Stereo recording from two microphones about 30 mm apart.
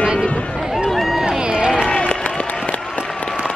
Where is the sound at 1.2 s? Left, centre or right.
Right.